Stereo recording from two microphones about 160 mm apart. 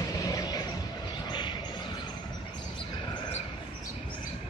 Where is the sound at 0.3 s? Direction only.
25° left (ahead or behind).